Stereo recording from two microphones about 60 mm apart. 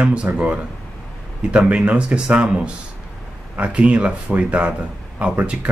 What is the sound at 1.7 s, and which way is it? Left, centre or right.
Speech, right.